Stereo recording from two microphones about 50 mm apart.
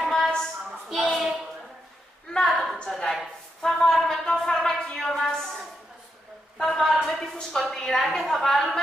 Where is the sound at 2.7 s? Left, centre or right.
Centre.